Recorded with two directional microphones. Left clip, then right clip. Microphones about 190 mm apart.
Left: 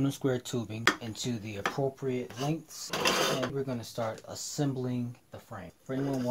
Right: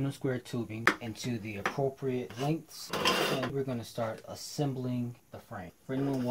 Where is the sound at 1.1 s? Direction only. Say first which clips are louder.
Left 1 dB; 20° left (ahead or behind).